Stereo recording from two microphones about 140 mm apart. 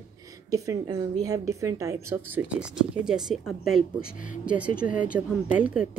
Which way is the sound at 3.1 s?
5° right (ahead or behind).